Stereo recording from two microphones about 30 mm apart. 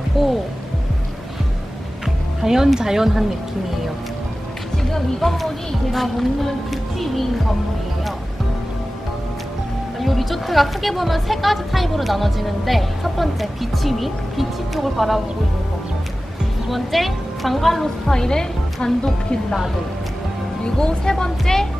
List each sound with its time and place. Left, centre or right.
0.2 s speech: centre
2.4 s speech: centre
4.9 s speech: centre
9.9 s speech: centre
16.7 s speech: centre
18.0 s speech: centre
20.6 s speech: left